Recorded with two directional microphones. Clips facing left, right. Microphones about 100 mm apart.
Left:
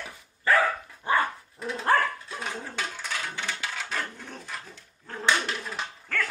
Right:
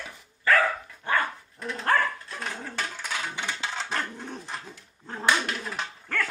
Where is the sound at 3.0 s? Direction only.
10° right (ahead or behind).